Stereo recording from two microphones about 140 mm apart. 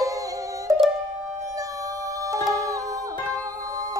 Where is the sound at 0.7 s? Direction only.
20° right (ahead or behind).